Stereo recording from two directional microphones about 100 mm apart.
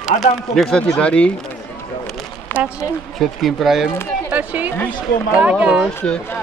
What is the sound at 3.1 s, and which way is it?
Speech, centre (ahead or behind).